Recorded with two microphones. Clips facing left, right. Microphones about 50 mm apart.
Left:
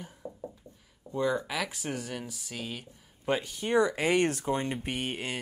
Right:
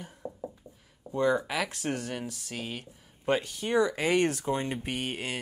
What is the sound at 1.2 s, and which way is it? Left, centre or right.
Speech, centre.